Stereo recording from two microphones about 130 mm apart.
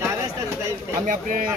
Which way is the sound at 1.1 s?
90° right.